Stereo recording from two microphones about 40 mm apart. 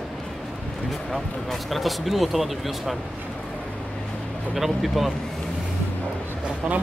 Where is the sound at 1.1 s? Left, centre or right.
Centre.